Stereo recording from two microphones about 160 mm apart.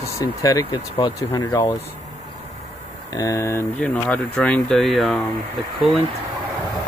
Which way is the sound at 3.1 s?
20° left (ahead or behind).